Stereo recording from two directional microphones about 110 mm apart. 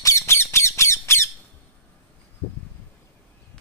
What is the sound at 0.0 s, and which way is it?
Squawk, 25° left (ahead or behind).